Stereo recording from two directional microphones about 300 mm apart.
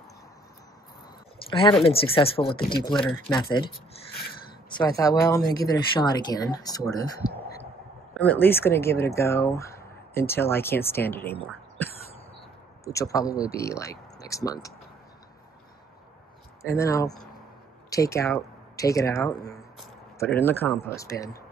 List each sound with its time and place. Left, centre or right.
1.5 s speech: centre
2.9 s speech: centre
3.3 s speech: centre
4.6 s speech: centre
12.8 s speech: centre
13.2 s speech: left
13.5 s speech: centre
16.6 s speech: centre